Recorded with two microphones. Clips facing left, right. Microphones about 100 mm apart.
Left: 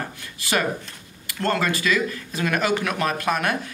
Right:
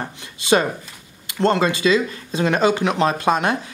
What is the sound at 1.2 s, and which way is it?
A man's voice, 20° right (ahead or behind).